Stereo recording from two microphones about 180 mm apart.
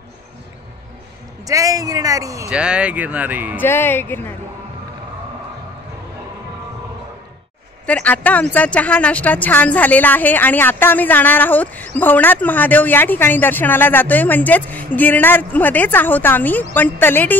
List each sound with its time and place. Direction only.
1.4 s speech: 20° right (ahead or behind)
2.5 s speech: 5° right (ahead or behind)
3.6 s speech: 10° left (ahead or behind)
7.8 s speech: 5° left (ahead or behind)